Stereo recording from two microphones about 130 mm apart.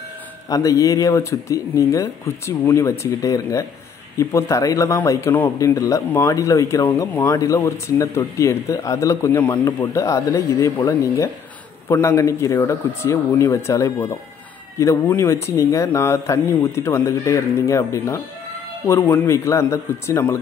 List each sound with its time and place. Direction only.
0.5 s speech: 25° left (ahead or behind)